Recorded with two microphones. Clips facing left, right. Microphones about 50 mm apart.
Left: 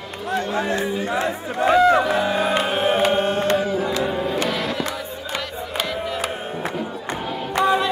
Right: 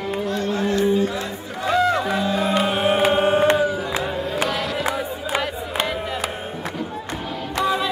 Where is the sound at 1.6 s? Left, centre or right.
Centre.